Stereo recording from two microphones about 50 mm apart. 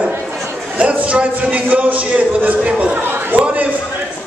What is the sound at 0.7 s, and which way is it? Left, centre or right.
A man's voice, right.